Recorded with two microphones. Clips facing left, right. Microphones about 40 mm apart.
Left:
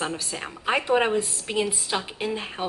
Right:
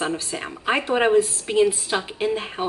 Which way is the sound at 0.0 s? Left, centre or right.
Centre.